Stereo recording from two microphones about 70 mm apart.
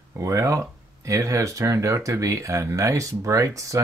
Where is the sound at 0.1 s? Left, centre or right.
Right.